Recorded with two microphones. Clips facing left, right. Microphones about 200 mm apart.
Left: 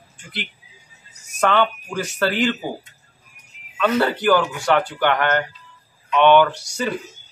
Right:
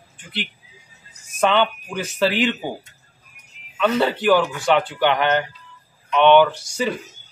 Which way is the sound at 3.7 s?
Centre (ahead or behind).